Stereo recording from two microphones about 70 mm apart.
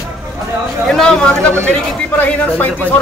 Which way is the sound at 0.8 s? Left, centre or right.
Centre.